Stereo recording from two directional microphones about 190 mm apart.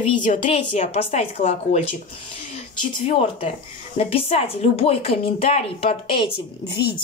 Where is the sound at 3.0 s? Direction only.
30° left (ahead or behind).